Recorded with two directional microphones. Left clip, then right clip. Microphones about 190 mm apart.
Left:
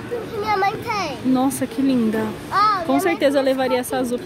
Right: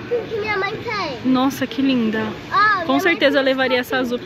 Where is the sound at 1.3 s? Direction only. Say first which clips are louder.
Right 2 dB; 5° left (ahead or behind).